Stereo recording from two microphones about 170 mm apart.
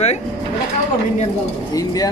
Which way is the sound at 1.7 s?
20° left (ahead or behind).